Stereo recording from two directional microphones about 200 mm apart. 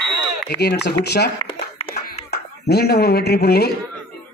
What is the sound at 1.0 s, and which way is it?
Speech, 55° left (ahead or behind).